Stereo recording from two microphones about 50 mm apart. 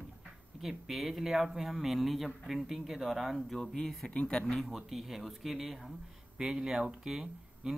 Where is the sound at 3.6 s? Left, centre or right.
Centre.